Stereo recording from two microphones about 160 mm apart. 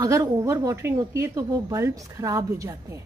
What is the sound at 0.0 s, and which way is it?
Speech, 20° right (ahead or behind).